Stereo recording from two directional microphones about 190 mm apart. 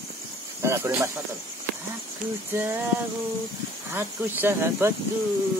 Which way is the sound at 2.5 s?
15° right (ahead or behind).